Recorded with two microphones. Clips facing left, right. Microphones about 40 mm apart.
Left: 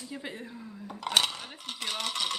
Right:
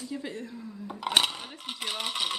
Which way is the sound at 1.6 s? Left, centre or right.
Centre.